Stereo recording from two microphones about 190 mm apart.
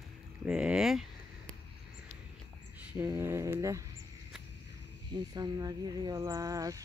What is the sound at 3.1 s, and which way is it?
Speech, 15° right (ahead or behind).